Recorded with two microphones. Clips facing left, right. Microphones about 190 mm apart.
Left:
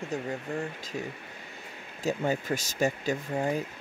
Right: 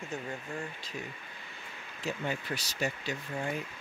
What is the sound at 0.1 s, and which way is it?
Speech, 35° left (ahead or behind).